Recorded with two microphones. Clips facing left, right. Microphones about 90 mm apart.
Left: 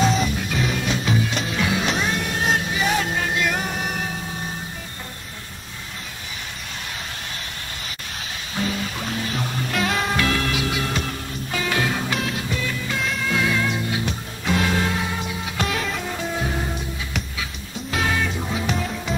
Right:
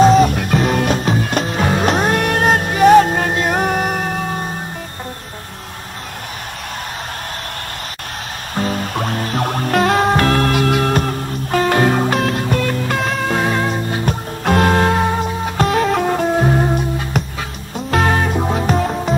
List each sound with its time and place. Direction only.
0.0 s music: 45° right (ahead or behind)
8.5 s music: 45° right (ahead or behind)